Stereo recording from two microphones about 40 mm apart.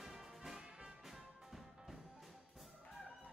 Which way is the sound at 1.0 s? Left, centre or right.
Centre.